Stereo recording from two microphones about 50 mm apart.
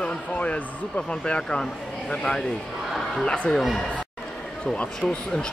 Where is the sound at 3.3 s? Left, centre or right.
Left.